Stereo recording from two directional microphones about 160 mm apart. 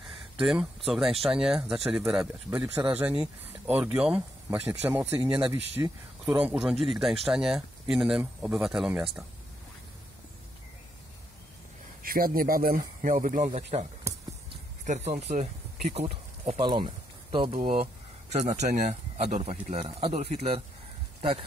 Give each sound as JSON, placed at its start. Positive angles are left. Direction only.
{"t": 0.4, "sound": "speech", "side_deg": -5}
{"t": 12.0, "sound": "speech", "side_deg": -65}
{"t": 13.5, "sound": "speech", "side_deg": -40}
{"t": 14.9, "sound": "speech", "side_deg": -45}
{"t": 16.6, "sound": "speech", "side_deg": -30}